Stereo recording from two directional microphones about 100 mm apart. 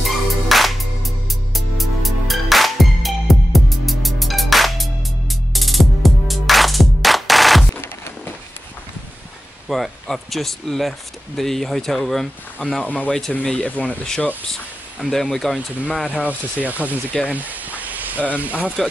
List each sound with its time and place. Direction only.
0.0 s music: centre (ahead or behind)
9.7 s speech: centre (ahead or behind)
12.8 s speech: 15° left (ahead or behind)
16.3 s speech: 15° right (ahead or behind)